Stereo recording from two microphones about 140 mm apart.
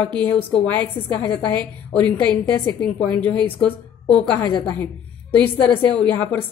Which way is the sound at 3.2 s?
10° left (ahead or behind).